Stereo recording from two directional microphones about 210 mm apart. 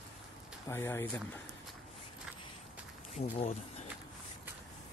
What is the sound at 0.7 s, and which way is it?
Speech, 15° left (ahead or behind).